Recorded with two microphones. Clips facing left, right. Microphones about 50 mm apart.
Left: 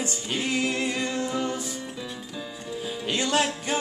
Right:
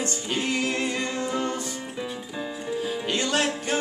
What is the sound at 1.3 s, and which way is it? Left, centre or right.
Music, centre.